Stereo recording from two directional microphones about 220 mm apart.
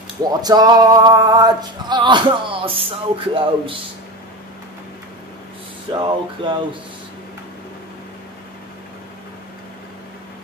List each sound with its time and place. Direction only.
0.2 s music: 15° right (ahead or behind)
5.9 s music: 20° right (ahead or behind)